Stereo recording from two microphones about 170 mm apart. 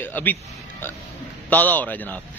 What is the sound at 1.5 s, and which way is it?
Speech, 10° left (ahead or behind).